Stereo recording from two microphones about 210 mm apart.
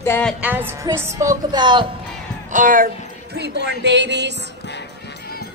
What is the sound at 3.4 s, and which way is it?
Music, 55° right (ahead or behind).